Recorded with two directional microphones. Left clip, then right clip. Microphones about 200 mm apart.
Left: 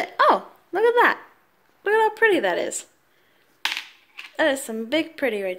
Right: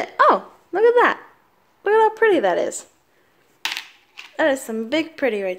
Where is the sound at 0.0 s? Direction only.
Centre (ahead or behind).